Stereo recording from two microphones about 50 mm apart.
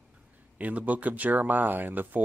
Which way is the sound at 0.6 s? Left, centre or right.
Right.